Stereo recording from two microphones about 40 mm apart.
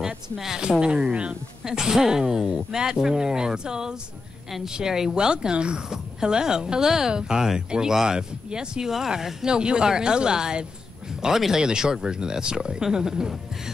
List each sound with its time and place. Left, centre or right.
0.0 s a woman's voice: centre
1.6 s speech: centre